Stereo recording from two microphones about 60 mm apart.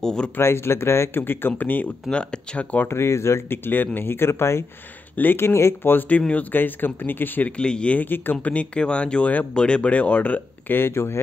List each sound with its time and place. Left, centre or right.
0.0 s speech: centre
0.4 s speech: left
2.0 s speech: centre
2.8 s speech: left
5.9 s speech: left
7.5 s speech: centre
8.0 s speech: left
8.5 s speech: centre
10.8 s speech: left